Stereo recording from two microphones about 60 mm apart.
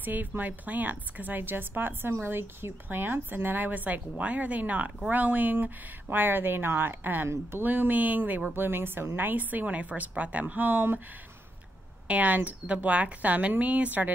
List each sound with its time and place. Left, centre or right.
0.0 s a woman's voice: right
12.1 s speech: right